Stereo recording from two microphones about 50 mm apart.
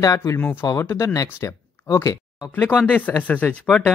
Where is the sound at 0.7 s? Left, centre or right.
Left.